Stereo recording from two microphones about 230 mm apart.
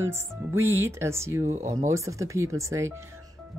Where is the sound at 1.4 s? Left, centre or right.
Right.